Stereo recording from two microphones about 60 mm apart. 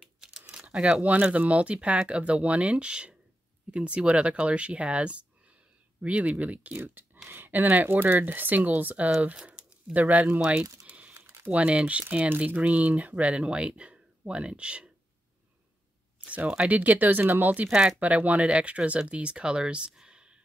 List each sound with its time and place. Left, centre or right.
0.5 s a sound: centre
1.0 s speech: right
10.9 s crumpling: right
11.5 s speech: centre
16.3 s speech: right